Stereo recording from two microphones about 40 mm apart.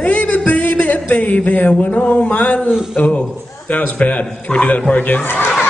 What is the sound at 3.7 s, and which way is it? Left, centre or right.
A man's voice, left.